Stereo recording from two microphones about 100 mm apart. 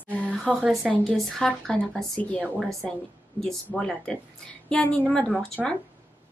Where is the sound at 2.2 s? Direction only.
15° left (ahead or behind).